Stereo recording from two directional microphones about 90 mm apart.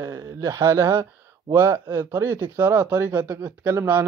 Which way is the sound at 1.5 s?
35° right (ahead or behind).